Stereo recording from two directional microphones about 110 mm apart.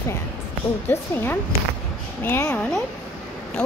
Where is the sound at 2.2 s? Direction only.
20° left (ahead or behind).